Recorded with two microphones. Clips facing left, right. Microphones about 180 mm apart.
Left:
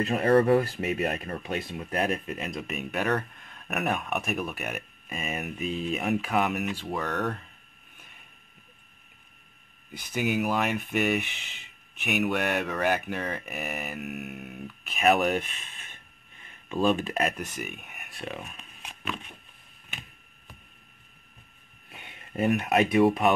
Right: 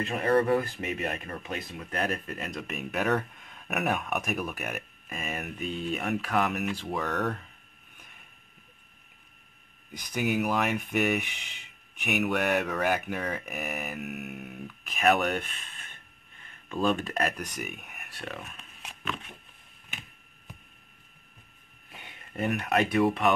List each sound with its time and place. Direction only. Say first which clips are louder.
0.0 s speech: left 3 dB; 30° left (ahead or behind)
1.9 s speech: left 3 dB; 5° left (ahead or behind)
9.8 s speech: left 1 dB; 5° left (ahead or behind)
18.3 s a sound: left 2 dB; 15° left (ahead or behind)
22.3 s speech: left 3 dB; 15° left (ahead or behind)